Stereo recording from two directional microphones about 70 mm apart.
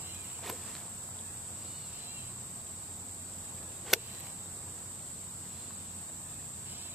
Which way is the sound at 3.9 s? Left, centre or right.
Centre.